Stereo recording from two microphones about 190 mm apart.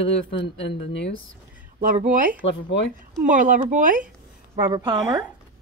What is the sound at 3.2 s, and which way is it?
Speech, 45° right (ahead or behind).